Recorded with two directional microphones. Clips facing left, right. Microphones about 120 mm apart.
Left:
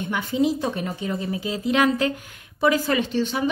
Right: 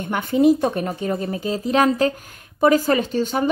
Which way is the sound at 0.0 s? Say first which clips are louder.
Right 5 dB; 50° right (ahead or behind).